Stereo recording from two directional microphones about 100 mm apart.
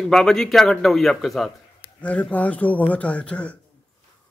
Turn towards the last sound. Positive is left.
turn(degrees=10)  # may be behind; listen again after turning